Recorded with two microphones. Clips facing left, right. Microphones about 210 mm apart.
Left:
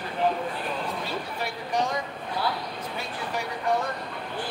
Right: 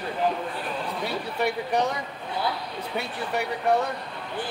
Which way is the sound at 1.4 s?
65° right (ahead or behind).